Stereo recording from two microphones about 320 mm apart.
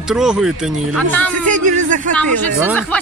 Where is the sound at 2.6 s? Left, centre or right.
Centre.